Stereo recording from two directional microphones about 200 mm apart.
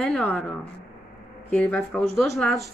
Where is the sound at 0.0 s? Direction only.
5° left (ahead or behind).